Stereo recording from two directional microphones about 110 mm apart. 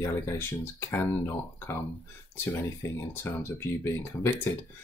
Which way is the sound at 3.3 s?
20° left (ahead or behind).